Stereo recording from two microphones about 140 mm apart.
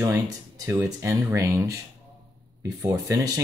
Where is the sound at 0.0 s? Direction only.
20° right (ahead or behind).